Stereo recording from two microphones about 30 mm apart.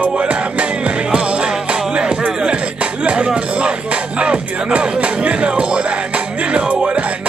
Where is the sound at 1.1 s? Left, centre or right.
Right.